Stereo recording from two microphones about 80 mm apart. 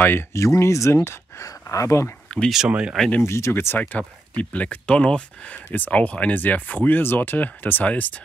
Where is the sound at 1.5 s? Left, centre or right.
Left.